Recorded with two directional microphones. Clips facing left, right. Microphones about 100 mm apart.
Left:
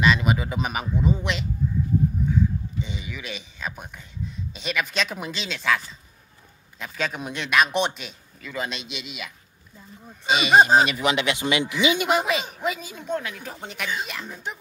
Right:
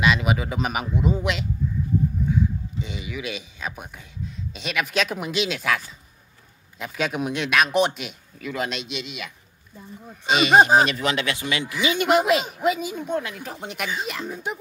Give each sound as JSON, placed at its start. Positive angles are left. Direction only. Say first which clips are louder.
{"t": 0.0, "sound": "speech", "louder": "even", "side_deg": -5}
{"t": 2.8, "sound": "speech", "louder": "right 2 dB", "side_deg": -5}
{"t": 6.8, "sound": "speech", "louder": "right 4 dB", "side_deg": -5}
{"t": 10.9, "sound": "speech", "louder": "left 1 dB", "side_deg": 15}
{"t": 12.0, "sound": "speech", "louder": "right 4 dB", "side_deg": 0}